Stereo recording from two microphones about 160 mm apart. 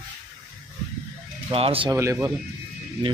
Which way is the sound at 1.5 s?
35° right (ahead or behind).